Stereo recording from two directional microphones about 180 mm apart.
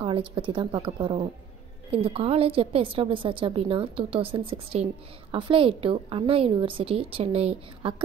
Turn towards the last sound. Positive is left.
turn(degrees=-35)  # may be behind; listen again after turning